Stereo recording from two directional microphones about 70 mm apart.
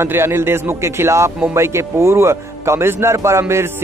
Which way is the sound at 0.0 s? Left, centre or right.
Right.